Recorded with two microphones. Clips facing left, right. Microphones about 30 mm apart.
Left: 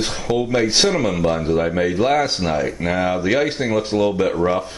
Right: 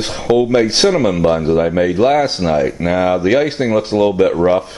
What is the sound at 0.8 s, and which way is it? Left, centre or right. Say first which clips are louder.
Speech: right 5 dB; centre.